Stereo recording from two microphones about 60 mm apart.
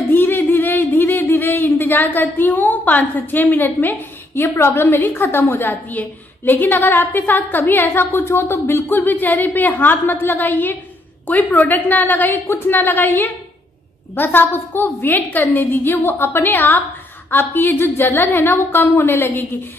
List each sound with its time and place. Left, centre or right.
0.0 s a sound: left
4.4 s a woman's voice: left
8.9 s a woman's voice: left